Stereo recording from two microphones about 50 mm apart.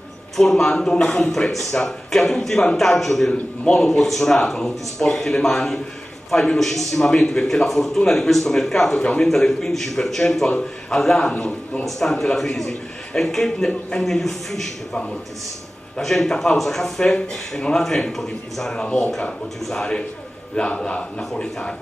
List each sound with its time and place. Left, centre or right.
0.4 s speech: centre
9.0 s a man's voice: left
11.3 s a man's voice: left
11.8 s speech: centre
13.7 s speech: centre
14.0 s a man's voice: centre
16.0 s a man's voice: centre